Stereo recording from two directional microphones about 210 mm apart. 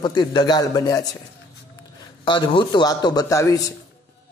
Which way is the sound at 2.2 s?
20° left (ahead or behind).